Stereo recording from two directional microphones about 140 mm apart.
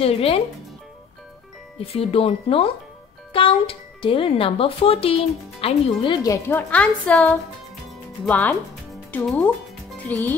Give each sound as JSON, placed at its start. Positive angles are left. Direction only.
{"t": 0.0, "sound": "speech", "side_deg": 45}
{"t": 1.8, "sound": "speech", "side_deg": 45}
{"t": 6.2, "sound": "a woman's voice", "side_deg": 15}